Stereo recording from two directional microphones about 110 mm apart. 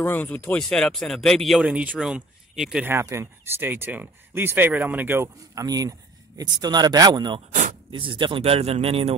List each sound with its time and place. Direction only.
0.0 s speech: 15° left (ahead or behind); by 1.7 s centre (ahead or behind)
1.7 s speech: 10° right (ahead or behind)
2.8 s speech: 20° right (ahead or behind); by 7.3 s 40° right (ahead or behind)
7.3 s speech: 55° right (ahead or behind)